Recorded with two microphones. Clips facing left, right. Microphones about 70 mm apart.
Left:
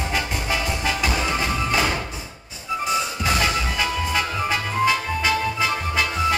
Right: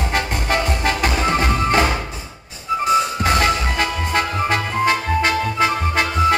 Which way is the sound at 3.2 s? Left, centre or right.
Right.